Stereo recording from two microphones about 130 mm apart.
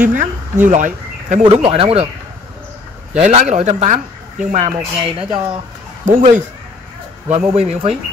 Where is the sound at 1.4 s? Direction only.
50° right (ahead or behind).